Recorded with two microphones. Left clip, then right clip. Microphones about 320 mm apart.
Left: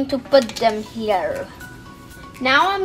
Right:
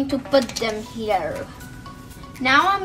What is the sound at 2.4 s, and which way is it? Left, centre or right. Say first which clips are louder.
Speech: left 1 dB; left.